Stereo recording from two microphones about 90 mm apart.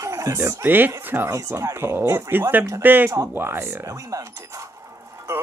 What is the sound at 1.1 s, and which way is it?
Speech, 25° right (ahead or behind).